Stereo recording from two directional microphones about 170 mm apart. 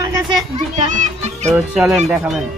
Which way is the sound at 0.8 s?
45° right (ahead or behind).